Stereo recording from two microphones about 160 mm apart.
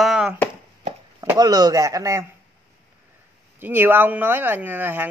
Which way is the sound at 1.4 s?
25° right (ahead or behind).